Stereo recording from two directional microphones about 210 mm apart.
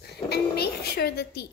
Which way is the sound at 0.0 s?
50° left (ahead or behind).